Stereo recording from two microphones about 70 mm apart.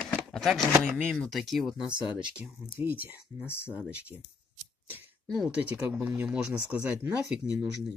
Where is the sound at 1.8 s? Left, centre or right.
Centre.